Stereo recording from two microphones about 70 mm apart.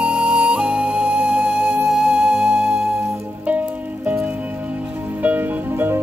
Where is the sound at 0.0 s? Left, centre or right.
Centre.